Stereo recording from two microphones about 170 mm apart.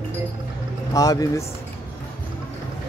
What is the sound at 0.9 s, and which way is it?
Speech, 20° left (ahead or behind).